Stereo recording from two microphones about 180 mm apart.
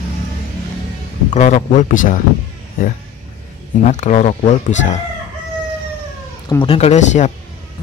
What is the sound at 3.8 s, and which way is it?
Speech, 40° left (ahead or behind).